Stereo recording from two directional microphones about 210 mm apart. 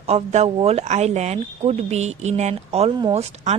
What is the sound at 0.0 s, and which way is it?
Speech, 30° right (ahead or behind).